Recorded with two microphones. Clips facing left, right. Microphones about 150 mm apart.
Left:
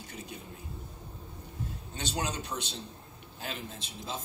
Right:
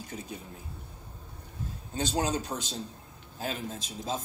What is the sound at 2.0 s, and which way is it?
Speech, 40° right (ahead or behind).